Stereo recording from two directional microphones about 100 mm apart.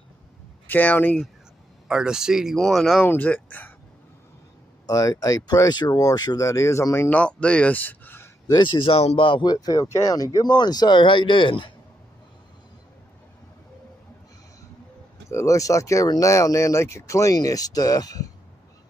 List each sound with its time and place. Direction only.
0.7 s speech: 20° left (ahead or behind)
1.9 s speech: 5° right (ahead or behind)
3.1 s speech: 20° left (ahead or behind)
4.8 s speech: 35° left (ahead or behind)
7.1 s speech: 10° left (ahead or behind)
8.5 s speech: 50° left (ahead or behind)
15.2 s speech: 30° left (ahead or behind)